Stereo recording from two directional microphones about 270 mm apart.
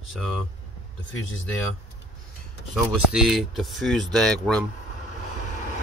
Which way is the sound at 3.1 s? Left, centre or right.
Centre.